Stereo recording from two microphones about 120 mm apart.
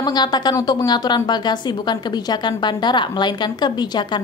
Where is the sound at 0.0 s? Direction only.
35° left (ahead or behind).